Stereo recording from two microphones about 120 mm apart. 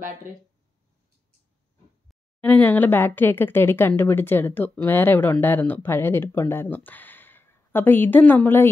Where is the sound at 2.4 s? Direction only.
15° left (ahead or behind).